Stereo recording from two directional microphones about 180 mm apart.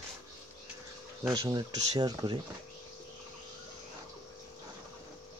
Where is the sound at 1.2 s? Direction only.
20° right (ahead or behind).